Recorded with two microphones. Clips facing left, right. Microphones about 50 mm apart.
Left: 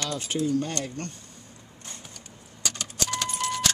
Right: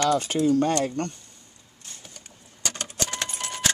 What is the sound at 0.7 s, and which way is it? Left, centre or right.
Speech, right.